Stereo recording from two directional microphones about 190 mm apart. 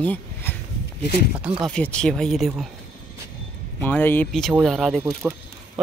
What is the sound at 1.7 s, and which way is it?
Speech, 5° left (ahead or behind).